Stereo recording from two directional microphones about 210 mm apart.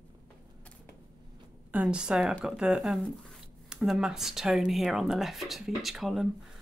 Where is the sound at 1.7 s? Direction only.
5° right (ahead or behind).